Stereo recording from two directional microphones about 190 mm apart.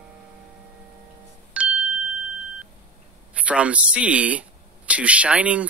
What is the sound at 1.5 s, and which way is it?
Music, 5° right (ahead or behind).